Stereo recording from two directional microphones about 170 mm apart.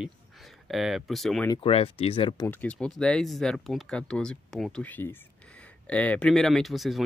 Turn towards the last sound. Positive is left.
turn(degrees=0)  # may be behind; listen again after turning